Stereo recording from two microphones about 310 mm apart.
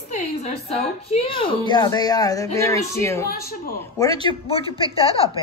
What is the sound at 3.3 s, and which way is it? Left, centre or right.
Speech, left.